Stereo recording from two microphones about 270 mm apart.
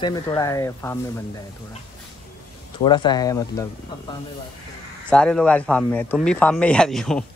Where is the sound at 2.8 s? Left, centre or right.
Centre.